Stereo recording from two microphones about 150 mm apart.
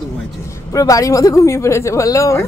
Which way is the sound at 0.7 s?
20° left (ahead or behind).